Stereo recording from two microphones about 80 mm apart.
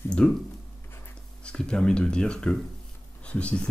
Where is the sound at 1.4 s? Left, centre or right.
Centre.